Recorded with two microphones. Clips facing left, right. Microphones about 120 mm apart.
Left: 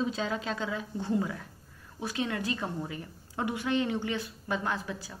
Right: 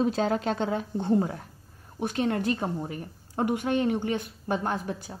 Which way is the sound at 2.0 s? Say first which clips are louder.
Right 6 dB; 50° right (ahead or behind).